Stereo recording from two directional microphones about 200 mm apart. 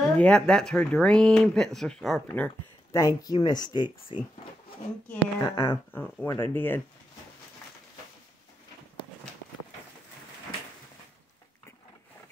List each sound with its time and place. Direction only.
0.0 s speech: 5° left (ahead or behind); by 4.2 s 20° left (ahead or behind)
5.4 s speech: 20° left (ahead or behind)
5.9 s speech: 10° left (ahead or behind)